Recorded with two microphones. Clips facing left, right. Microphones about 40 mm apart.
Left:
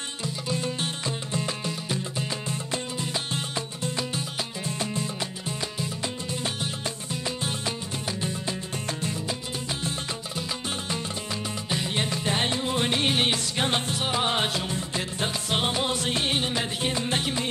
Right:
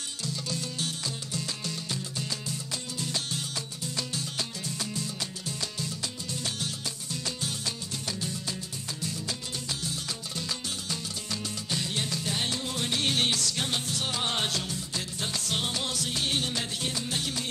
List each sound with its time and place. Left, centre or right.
0.2 s music: left
6.3 s music: left
11.7 s music: left